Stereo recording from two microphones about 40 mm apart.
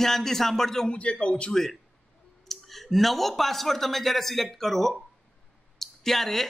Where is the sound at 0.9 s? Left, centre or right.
Left.